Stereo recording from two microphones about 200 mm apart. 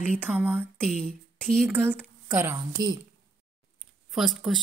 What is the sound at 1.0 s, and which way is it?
Speech, 5° left (ahead or behind).